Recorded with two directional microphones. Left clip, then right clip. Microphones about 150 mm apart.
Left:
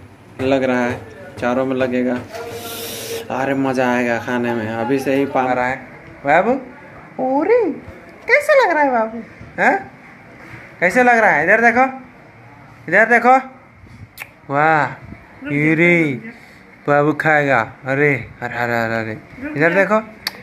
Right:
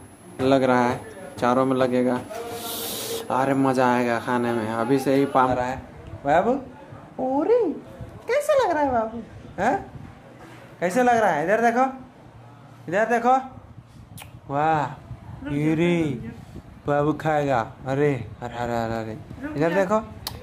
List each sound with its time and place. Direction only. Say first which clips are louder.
0.4 s a man's voice: left 2 dB; 15° right (ahead or behind)
2.6 s printer: left 3 dB; 30° right (ahead or behind)
3.3 s speech: left 2 dB; 10° right (ahead or behind)
5.5 s a man's voice: left 7 dB; 5° left (ahead or behind)
10.8 s a man's voice: left 7 dB; centre (ahead or behind)
14.5 s a man's voice: left 7 dB; 15° left (ahead or behind)
15.5 s a man's voice: left 9 dB; 5° left (ahead or behind)